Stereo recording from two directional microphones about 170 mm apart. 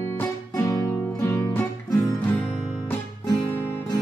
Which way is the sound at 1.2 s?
20° left (ahead or behind).